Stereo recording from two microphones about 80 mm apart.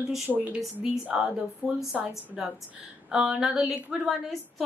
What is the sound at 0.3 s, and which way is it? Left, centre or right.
A woman's voice, centre.